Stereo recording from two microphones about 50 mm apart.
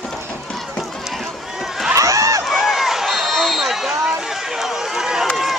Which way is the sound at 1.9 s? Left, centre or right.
Right.